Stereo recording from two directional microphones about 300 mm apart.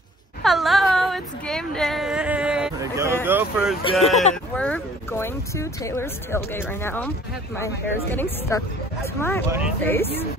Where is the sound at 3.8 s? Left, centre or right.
Centre.